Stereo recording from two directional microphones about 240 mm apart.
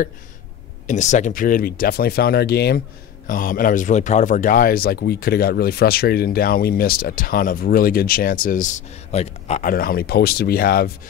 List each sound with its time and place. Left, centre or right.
0.8 s a man's voice: left